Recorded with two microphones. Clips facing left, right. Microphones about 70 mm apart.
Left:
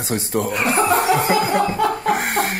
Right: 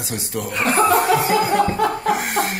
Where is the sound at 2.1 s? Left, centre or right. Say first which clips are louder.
Left 1 dB; left.